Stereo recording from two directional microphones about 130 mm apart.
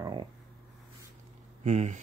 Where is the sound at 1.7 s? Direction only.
60° right (ahead or behind).